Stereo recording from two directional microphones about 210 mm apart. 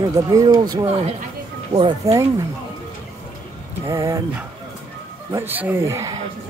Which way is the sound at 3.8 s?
15° right (ahead or behind).